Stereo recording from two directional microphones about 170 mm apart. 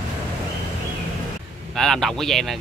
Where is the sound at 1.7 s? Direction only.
Centre (ahead or behind).